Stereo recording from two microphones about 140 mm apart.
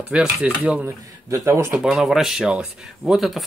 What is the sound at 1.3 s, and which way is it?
Speech, 20° right (ahead or behind).